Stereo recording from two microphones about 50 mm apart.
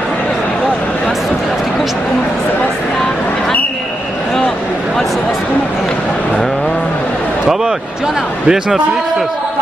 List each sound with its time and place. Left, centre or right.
8.5 s a man's voice: centre